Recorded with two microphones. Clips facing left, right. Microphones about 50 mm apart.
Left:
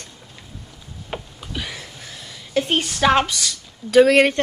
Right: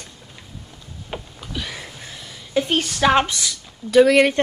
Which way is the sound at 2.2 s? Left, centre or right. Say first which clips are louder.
Even; centre.